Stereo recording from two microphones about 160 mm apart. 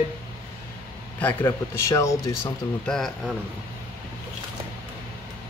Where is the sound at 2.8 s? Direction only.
5° left (ahead or behind).